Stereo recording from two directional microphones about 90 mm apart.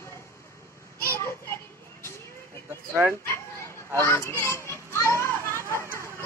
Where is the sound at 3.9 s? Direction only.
30° left (ahead or behind).